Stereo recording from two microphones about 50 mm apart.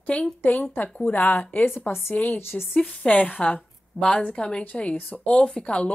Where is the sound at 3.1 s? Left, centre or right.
Left.